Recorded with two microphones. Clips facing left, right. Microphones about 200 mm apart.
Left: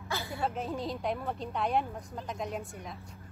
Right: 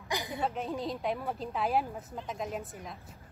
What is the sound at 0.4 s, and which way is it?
A woman's voice, centre (ahead or behind).